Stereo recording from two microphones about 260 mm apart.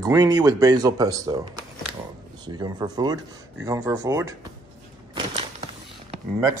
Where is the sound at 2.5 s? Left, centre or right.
Centre.